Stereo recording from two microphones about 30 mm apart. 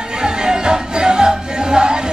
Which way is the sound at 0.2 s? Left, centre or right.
Right.